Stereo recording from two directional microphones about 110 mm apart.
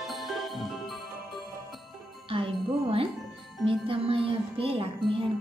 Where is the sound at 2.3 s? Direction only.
55° right (ahead or behind).